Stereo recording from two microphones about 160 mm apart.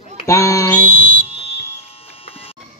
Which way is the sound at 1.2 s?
40° left (ahead or behind).